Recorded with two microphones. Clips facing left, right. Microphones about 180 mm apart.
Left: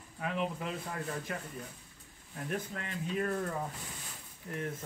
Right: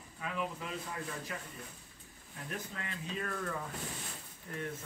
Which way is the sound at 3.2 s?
25° left (ahead or behind).